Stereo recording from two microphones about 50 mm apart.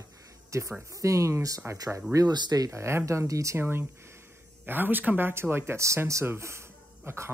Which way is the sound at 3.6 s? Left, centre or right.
Right.